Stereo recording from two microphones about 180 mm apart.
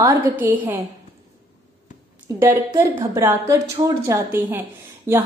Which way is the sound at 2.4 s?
15° right (ahead or behind).